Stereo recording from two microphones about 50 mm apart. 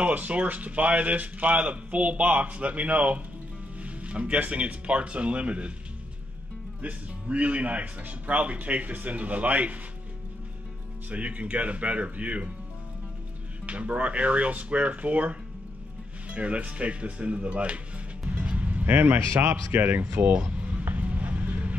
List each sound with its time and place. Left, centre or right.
0.0 s a man's voice: right
6.8 s a man's voice: right
11.1 s a man's voice: right
13.7 s a man's voice: right
19.1 s speech: right
19.7 s speech: right
20.8 s a sound: right